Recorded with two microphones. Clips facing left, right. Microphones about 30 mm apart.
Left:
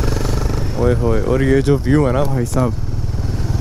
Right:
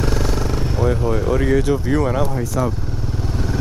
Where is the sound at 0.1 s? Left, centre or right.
Centre.